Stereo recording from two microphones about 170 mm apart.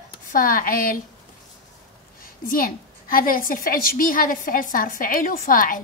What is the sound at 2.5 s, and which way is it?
A woman's voice, 55° left (ahead or behind).